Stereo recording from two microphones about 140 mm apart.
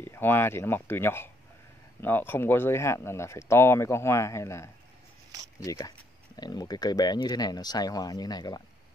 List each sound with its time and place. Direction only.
0.0 s speech: 15° left (ahead or behind)